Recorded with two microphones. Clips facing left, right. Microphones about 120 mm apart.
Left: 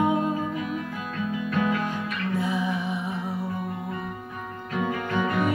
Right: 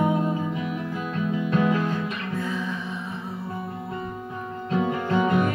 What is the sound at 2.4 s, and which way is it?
Music, 15° left (ahead or behind).